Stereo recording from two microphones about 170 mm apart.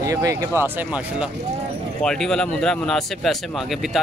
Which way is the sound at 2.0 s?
5° left (ahead or behind).